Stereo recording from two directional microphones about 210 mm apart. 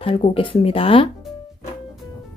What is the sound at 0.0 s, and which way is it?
Speech, 25° left (ahead or behind).